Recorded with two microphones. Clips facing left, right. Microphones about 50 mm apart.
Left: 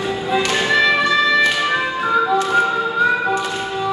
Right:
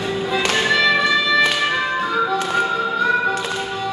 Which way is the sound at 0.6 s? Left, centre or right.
Centre.